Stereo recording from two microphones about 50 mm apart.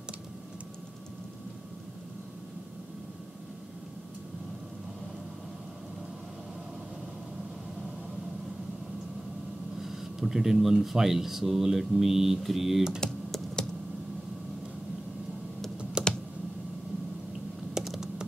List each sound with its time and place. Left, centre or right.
9.8 s speech: centre
13.0 s computer keyboard: centre
16.0 s computer keyboard: centre
17.8 s computer keyboard: centre